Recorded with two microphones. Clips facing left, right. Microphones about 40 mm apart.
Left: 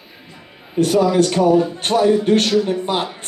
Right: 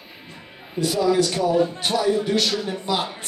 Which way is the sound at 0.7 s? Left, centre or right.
Left.